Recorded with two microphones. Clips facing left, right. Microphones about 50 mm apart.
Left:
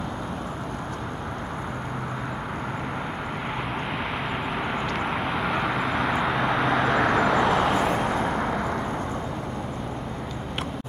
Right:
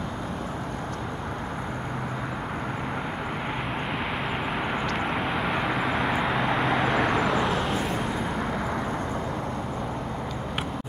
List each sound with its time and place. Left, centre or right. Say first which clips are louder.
4.9 s vehicle: even; centre
7.4 s vehicle: left 5 dB; left
7.7 s vehicle: left 4 dB; left
8.2 s vehicle: left 3 dB; centre